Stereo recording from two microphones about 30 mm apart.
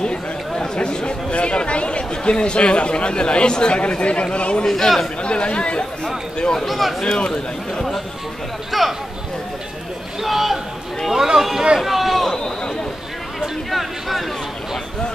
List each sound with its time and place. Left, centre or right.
0.0 s speech: left
4.6 s a man's voice: centre
5.2 s speech: left
6.5 s speech: centre
7.2 s speech: left
8.7 s speech: centre
10.2 s a man's voice: centre
11.8 s a sound: centre
12.3 s a sound: centre
13.7 s speech: centre